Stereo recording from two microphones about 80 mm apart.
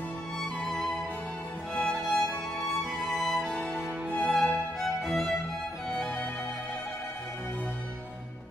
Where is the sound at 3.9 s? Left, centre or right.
Right.